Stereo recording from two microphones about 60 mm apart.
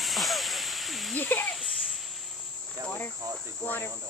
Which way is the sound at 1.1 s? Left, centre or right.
Left.